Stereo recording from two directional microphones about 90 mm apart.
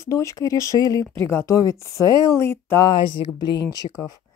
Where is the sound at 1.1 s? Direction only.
30° left (ahead or behind).